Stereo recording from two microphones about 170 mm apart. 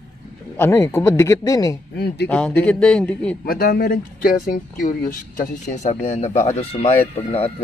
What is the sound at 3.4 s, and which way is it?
Speech, 60° left (ahead or behind).